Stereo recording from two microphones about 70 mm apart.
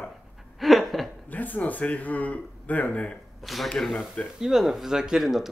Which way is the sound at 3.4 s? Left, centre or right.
Centre.